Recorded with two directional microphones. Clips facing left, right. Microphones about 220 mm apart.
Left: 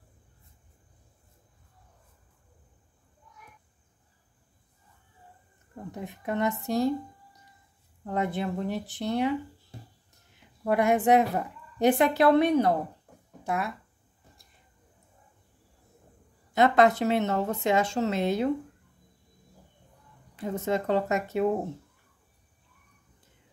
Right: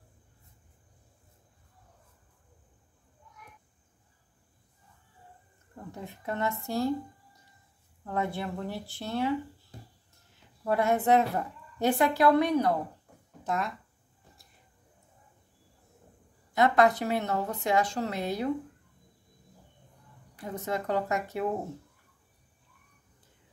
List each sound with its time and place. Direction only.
5.9 s speech: 15° left (ahead or behind)
8.0 s speech: 15° left (ahead or behind)
10.6 s speech: 15° left (ahead or behind)
13.4 s speech: 10° left (ahead or behind)
16.5 s speech: 25° left (ahead or behind)
20.3 s speech: 25° left (ahead or behind)